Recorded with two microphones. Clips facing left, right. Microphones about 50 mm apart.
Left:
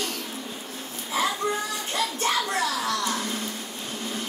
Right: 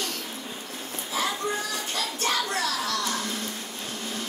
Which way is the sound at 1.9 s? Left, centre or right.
Left.